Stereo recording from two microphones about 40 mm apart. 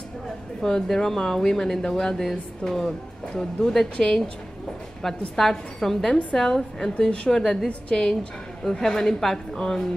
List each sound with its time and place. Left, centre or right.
0.6 s speech: centre